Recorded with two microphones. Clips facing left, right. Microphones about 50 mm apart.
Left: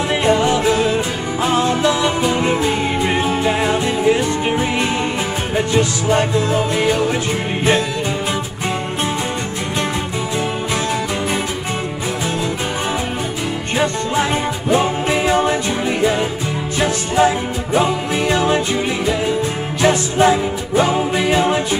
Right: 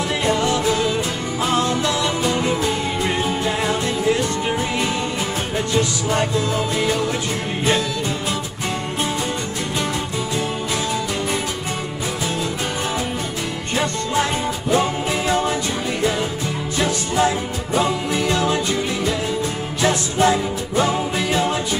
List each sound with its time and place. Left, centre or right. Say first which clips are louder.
0.2 s music: left 4 dB; left
14.7 s music: left 3 dB; left
19.8 s music: left 4 dB; left